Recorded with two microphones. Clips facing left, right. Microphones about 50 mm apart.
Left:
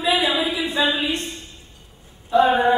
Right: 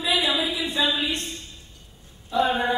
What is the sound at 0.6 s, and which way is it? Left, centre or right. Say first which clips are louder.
Speech: left 3 dB; left.